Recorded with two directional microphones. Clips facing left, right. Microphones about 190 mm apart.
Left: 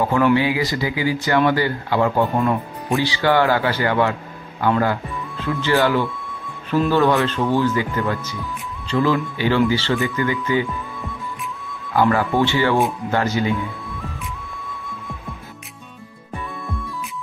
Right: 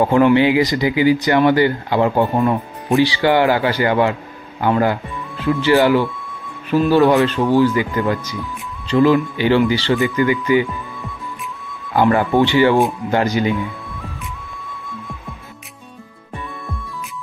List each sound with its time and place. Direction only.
0.0 s speech: 25° right (ahead or behind)
10.7 s music: centre (ahead or behind)
11.9 s speech: 20° right (ahead or behind)
14.7 s music: centre (ahead or behind)